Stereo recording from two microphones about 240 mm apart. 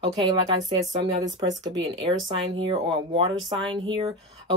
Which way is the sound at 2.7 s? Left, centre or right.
Right.